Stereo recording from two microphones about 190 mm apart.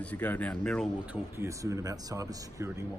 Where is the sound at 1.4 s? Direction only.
15° right (ahead or behind).